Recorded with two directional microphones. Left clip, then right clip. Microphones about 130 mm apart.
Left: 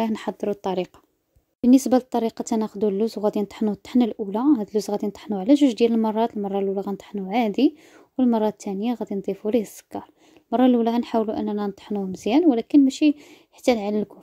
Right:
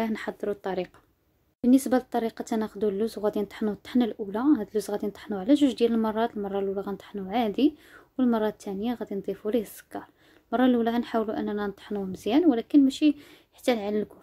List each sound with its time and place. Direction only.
0.0 s speech: 35° left (ahead or behind)